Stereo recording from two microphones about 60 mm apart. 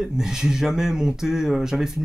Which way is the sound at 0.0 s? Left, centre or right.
Centre.